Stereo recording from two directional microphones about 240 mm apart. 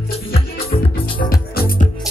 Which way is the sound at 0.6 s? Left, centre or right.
Left.